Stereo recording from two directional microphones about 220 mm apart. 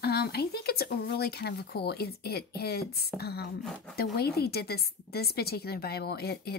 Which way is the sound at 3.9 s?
45° left (ahead or behind).